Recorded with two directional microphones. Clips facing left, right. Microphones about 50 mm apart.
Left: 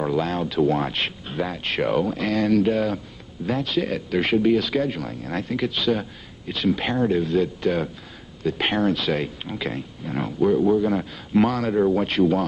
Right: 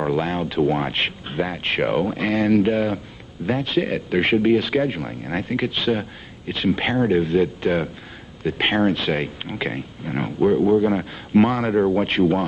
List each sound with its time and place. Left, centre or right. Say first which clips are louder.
0.0 s speech: right 1 dB; right